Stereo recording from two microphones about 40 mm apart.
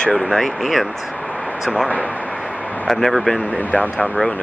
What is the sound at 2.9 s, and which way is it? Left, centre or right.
Speech, centre.